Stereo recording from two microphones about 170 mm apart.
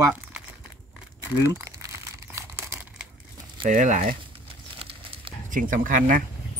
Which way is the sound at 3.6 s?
50° right (ahead or behind).